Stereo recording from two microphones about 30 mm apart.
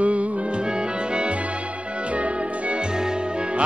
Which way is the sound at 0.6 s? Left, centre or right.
Right.